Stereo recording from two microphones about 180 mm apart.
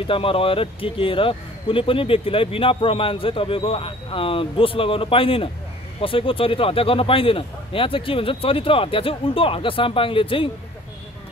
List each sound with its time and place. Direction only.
0.0 s a man's voice: 30° left (ahead or behind)